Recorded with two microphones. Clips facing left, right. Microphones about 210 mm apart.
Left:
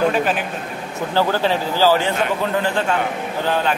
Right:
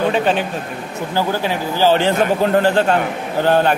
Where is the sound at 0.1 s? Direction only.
30° right (ahead or behind).